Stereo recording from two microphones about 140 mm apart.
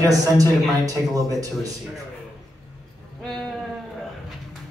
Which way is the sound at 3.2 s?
5° left (ahead or behind).